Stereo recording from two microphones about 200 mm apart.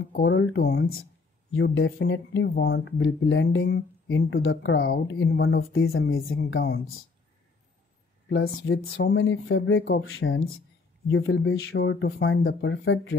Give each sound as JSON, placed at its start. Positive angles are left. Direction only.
{"t": 0.1, "sound": "speech", "side_deg": 65}
{"t": 1.5, "sound": "speech", "side_deg": 75}
{"t": 6.0, "sound": "speech", "side_deg": 90}
{"t": 6.3, "sound": "speech", "side_deg": 55}
{"t": 8.3, "sound": "speech", "side_deg": 65}